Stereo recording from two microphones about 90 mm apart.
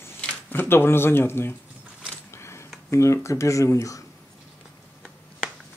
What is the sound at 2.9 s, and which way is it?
Speech, 30° left (ahead or behind).